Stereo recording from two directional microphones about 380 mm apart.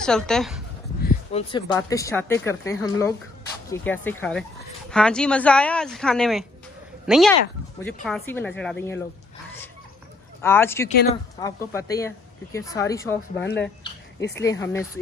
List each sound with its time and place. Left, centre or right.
0.0 s a woman's voice: centre
1.0 s a sound: centre
1.7 s a woman's voice: centre
10.4 s speech: centre
14.2 s speech: centre